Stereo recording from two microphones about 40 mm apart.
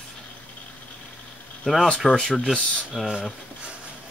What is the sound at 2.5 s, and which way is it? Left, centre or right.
Speech, left.